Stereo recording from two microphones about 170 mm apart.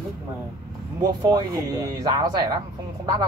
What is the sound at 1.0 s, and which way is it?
A man's voice, 20° right (ahead or behind).